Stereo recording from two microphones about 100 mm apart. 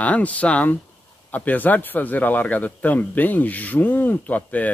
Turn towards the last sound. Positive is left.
turn(degrees=15)  # may be behind; listen again after turning